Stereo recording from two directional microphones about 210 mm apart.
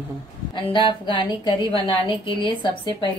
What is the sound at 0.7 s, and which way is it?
A woman's voice, 25° left (ahead or behind).